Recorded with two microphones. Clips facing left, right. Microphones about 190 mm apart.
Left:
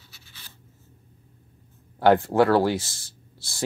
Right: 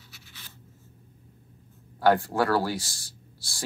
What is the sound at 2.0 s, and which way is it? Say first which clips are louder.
Speech: left 4 dB; 20° left (ahead or behind).